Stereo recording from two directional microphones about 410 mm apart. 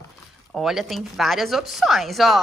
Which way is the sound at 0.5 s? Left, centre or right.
Centre.